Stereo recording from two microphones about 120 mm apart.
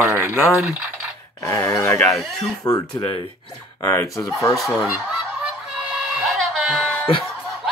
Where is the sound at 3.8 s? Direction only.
25° left (ahead or behind).